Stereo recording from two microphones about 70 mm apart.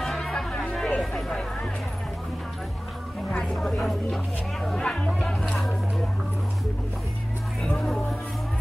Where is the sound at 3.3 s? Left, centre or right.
Centre.